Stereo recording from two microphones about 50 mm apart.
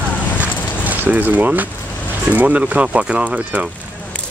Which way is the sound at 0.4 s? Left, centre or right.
Right.